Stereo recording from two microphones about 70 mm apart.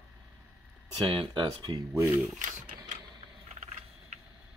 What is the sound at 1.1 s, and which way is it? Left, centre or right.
Speech, right.